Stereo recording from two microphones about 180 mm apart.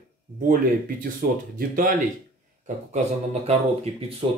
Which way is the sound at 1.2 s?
55° right (ahead or behind).